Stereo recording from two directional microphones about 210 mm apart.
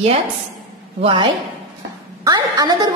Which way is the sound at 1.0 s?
25° right (ahead or behind).